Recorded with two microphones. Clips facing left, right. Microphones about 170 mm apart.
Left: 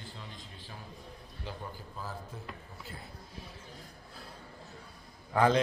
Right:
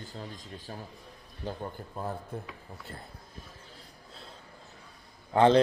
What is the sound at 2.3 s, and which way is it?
Speech, 55° right (ahead or behind).